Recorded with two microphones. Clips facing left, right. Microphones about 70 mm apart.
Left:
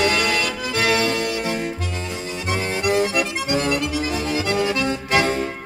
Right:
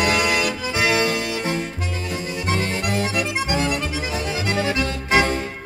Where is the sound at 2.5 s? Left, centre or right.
Centre.